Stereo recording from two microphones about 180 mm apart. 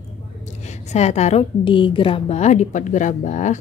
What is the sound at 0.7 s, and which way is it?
A woman's voice, 40° left (ahead or behind).